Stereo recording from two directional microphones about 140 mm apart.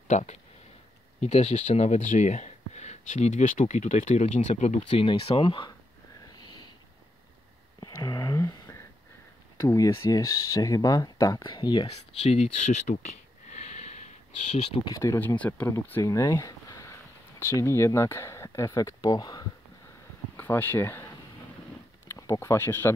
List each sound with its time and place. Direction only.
0.1 s speech: 55° left (ahead or behind)
4.8 s speech: 40° left (ahead or behind)
7.8 s a sound: 25° left (ahead or behind)
9.6 s speech: 25° left (ahead or behind)
12.2 s sniff: 50° left (ahead or behind)
14.9 s speech: 20° left (ahead or behind)
15.7 s speech: 25° left (ahead or behind)
20.3 s speech: 15° left (ahead or behind)